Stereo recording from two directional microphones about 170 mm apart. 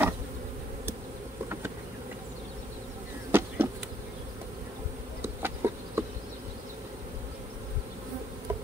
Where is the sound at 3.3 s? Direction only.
10° right (ahead or behind).